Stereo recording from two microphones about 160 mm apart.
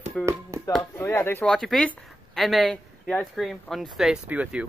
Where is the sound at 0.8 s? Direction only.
20° left (ahead or behind).